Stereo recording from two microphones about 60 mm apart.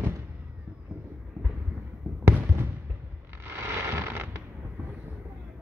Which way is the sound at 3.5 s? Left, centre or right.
Right.